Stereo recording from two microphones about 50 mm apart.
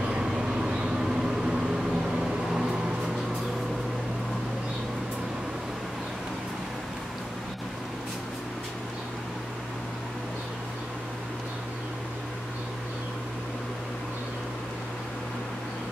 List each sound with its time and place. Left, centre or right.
0.0 s vehicle: centre